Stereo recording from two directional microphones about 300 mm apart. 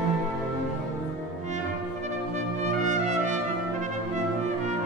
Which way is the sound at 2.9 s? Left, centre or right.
Right.